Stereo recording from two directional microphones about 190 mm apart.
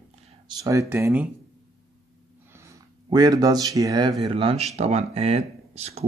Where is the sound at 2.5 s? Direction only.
15° right (ahead or behind).